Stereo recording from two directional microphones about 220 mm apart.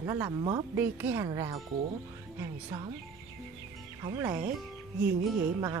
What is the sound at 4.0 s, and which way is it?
Speech, 15° right (ahead or behind).